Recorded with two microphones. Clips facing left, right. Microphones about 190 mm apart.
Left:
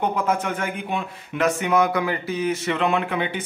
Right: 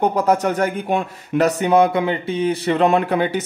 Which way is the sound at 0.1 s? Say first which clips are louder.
Right 6 dB; 40° right (ahead or behind).